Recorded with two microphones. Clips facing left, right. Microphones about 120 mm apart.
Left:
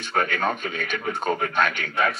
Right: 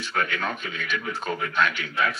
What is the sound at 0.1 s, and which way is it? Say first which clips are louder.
Speech: left 4 dB; 40° left (ahead or behind).